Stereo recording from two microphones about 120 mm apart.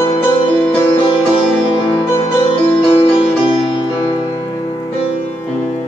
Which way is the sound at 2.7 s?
50° left (ahead or behind).